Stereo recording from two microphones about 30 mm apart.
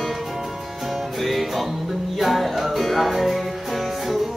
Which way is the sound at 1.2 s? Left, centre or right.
Centre.